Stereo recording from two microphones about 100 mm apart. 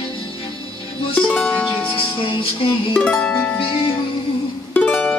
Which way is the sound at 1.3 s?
10° left (ahead or behind).